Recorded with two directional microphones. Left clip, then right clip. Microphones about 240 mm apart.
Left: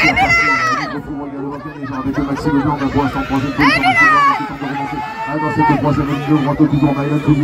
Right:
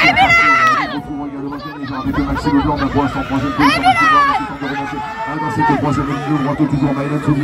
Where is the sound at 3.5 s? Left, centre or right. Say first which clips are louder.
Even; centre.